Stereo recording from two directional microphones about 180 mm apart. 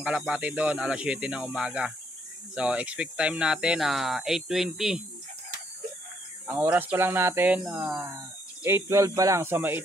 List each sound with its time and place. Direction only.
0.0 s speech: 5° right (ahead or behind)
6.4 s speech: 10° right (ahead or behind)